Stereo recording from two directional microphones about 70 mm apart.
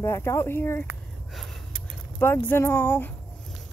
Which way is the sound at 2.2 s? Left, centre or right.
Left.